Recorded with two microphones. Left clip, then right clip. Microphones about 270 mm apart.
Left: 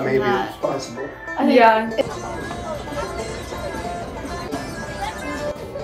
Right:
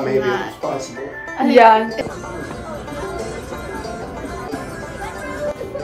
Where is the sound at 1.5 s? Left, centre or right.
Centre.